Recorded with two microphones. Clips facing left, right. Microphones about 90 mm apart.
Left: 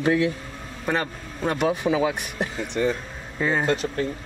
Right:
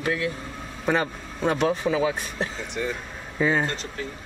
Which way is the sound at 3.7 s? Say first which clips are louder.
Left 9 dB; 55° left (ahead or behind).